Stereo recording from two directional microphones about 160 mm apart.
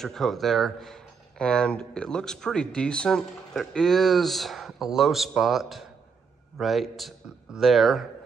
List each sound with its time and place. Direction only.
0.0 s speech: centre (ahead or behind)